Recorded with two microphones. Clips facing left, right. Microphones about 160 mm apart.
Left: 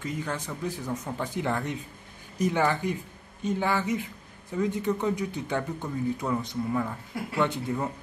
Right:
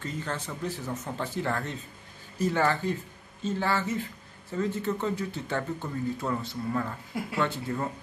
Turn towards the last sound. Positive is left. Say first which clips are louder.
# left 2 dB
turn(degrees=15)  # may be behind; listen again after turning